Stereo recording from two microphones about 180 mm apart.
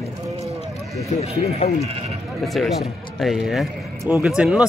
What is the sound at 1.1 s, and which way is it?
Speech, 35° left (ahead or behind).